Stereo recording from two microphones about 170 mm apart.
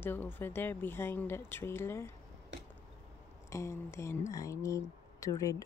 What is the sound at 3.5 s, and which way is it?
Speech, 15° left (ahead or behind).